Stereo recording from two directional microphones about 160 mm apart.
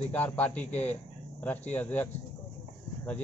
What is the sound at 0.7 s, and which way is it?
Speech, 45° left (ahead or behind).